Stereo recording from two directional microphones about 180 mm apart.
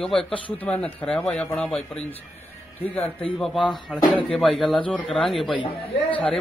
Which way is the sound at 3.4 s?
Centre (ahead or behind).